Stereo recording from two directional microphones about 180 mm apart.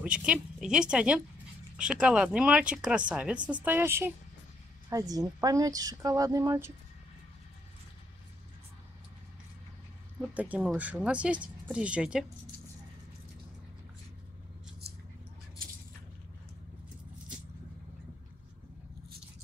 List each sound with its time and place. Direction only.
0.0 s a woman's voice: 5° right (ahead or behind)
10.3 s speech: 10° right (ahead or behind)